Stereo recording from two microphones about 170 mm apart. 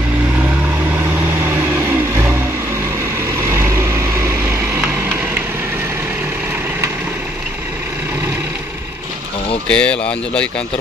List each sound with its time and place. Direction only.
3.4 s vehicle: 15° right (ahead or behind)
9.7 s speech: 5° left (ahead or behind)